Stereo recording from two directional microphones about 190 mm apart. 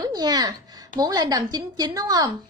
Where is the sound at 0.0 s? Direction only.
20° right (ahead or behind).